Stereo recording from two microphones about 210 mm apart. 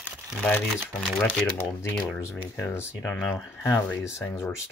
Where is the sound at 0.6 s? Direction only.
10° right (ahead or behind).